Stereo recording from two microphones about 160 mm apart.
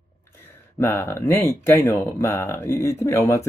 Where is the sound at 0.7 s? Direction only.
15° left (ahead or behind).